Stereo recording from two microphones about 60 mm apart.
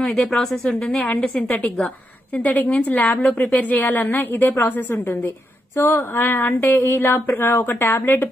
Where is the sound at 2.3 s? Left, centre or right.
Left.